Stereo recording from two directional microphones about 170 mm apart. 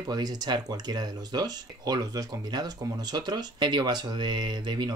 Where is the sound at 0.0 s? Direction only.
25° right (ahead or behind).